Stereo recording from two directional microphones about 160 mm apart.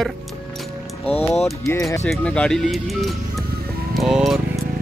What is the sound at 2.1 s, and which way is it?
Speech, 5° left (ahead or behind).